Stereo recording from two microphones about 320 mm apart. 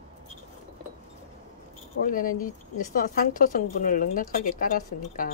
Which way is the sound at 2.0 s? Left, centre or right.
Left.